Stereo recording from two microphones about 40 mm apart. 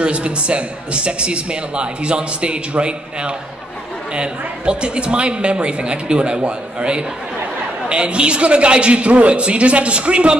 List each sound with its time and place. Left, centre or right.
0.0 s a man's voice: right